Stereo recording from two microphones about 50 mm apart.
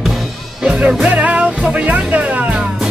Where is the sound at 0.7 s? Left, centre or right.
Right.